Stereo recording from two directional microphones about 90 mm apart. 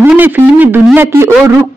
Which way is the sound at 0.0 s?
20° right (ahead or behind).